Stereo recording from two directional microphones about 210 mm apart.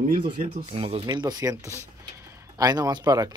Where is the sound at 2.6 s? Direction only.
20° right (ahead or behind).